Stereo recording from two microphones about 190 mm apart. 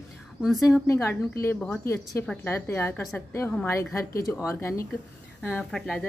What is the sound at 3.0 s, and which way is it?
Speech, centre (ahead or behind).